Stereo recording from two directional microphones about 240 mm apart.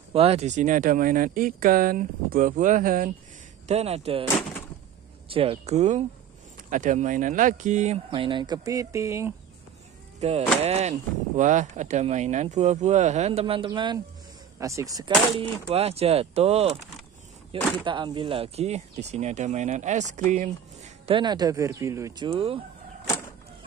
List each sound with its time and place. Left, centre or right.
0.1 s speech: right
5.3 s speech: right
10.2 s speech: right